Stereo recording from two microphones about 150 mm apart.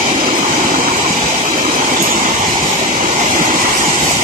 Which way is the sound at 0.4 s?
65° right (ahead or behind).